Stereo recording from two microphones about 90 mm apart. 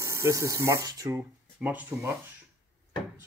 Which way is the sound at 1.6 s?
15° right (ahead or behind).